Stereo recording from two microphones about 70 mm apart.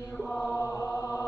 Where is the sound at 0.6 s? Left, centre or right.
Left.